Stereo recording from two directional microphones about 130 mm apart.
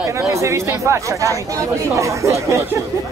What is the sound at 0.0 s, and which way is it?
Speech, 20° right (ahead or behind).